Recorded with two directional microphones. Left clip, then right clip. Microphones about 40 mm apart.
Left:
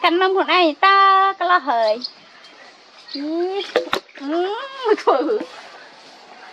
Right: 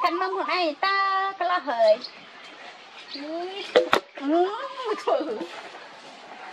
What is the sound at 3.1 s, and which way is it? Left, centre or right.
Speech, centre.